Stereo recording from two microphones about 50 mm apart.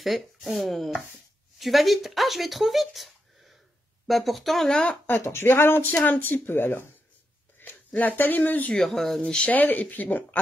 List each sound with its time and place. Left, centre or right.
0.0 s speech: centre
5.1 s speech: left
6.4 s speech: left
8.7 s speech: centre
9.5 s speech: left